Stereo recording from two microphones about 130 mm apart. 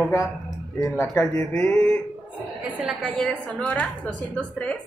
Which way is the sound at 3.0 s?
5° left (ahead or behind).